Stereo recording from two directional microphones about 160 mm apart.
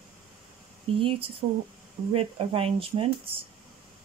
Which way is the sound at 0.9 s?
35° right (ahead or behind).